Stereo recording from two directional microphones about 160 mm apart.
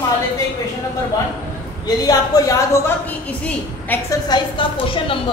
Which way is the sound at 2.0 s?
20° left (ahead or behind).